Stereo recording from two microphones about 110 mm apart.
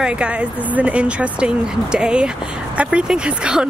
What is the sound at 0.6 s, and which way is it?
Speech, 15° right (ahead or behind).